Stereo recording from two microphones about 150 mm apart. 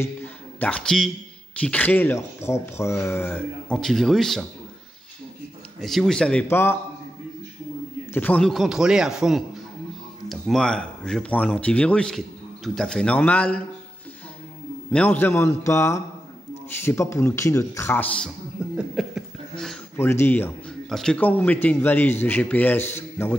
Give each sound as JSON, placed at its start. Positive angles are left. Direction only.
{"t": 0.0, "sound": "a sound", "side_deg": 10}
{"t": 1.6, "sound": "speech", "side_deg": 10}
{"t": 5.8, "sound": "speech", "side_deg": 0}
{"t": 8.1, "sound": "speech", "side_deg": 10}
{"t": 14.9, "sound": "speech", "side_deg": 10}
{"t": 18.8, "sound": "a sound", "side_deg": 0}
{"t": 20.0, "sound": "speech", "side_deg": 15}